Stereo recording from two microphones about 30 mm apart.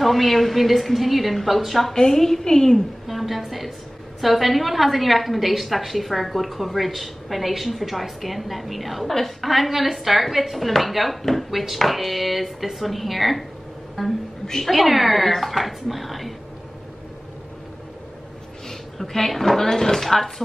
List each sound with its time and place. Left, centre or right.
0.0 s a woman's voice: centre
2.0 s speech: centre
3.1 s a sound: centre
4.2 s a woman's voice: centre
18.7 s speech: centre